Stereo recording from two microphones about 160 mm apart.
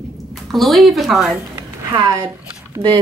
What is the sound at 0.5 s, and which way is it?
Speech, centre (ahead or behind).